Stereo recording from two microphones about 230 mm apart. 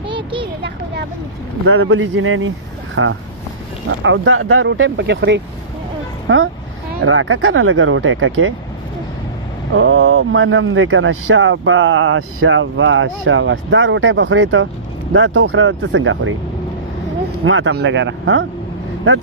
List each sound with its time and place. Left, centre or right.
0.1 s a sound: right
1.7 s a man's voice: right
9.8 s a man's voice: right
17.5 s speech: right